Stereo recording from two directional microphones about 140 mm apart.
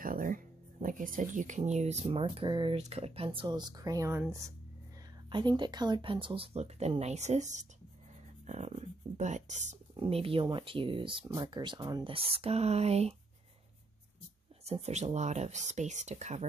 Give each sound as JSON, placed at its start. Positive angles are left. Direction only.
{"t": 0.0, "sound": "speech", "side_deg": -80}
{"t": 2.0, "sound": "speech", "side_deg": -40}
{"t": 2.8, "sound": "speech", "side_deg": -45}
{"t": 5.3, "sound": "speech", "side_deg": -35}
{"t": 9.9, "sound": "speech", "side_deg": -40}
{"t": 14.6, "sound": "speech", "side_deg": -50}